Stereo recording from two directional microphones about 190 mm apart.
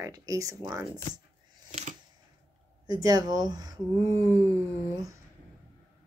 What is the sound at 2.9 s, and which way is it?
Speech, 20° right (ahead or behind).